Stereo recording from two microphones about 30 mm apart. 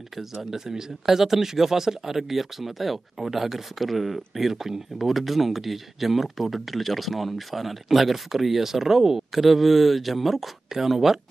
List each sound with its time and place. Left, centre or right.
0.1 s speech: centre